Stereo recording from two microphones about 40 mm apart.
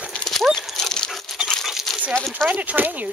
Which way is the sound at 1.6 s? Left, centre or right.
Centre.